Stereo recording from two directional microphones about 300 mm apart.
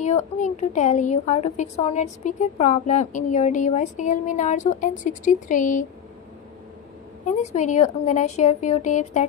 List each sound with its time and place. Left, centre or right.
0.0 s a woman's voice: left
7.2 s a woman's voice: left